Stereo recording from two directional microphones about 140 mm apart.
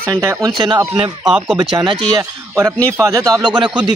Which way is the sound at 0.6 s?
30° right (ahead or behind).